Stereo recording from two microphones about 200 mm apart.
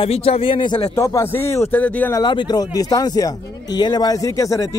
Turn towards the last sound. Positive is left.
turn(degrees=15)  # may be behind; listen again after turning